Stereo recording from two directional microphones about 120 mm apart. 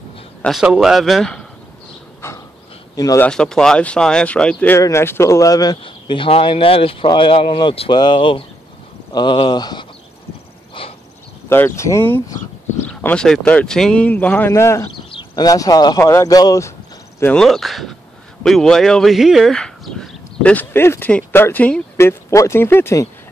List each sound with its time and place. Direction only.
0.5 s a man's voice: centre (ahead or behind)
2.2 s a sound: 20° left (ahead or behind)
3.2 s speech: 5° left (ahead or behind)
4.7 s speech: 25° left (ahead or behind)
5.8 s speech: 45° left (ahead or behind)
10.7 s insect: 50° left (ahead or behind)
11.4 s speech: 20° left (ahead or behind)
15.0 s speech: 40° left (ahead or behind)
17.4 s a man's voice: centre (ahead or behind)
21.9 s speech: 25° left (ahead or behind)